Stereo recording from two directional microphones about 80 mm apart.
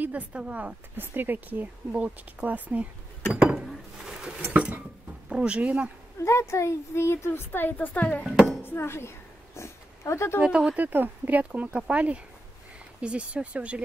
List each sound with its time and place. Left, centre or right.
0.0 s speech: centre
3.6 s a sound: centre
5.3 s speech: centre
6.2 s a woman's voice: left
8.3 s speech: centre
8.6 s speech: left
9.6 s a sound: left
10.4 s speech: centre
10.9 s speech: right